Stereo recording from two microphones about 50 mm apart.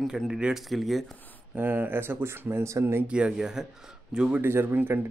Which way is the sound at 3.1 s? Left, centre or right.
Right.